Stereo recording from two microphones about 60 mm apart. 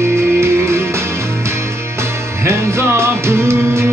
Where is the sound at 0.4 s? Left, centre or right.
Right.